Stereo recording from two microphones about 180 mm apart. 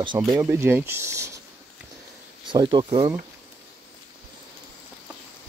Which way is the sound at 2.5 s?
25° right (ahead or behind).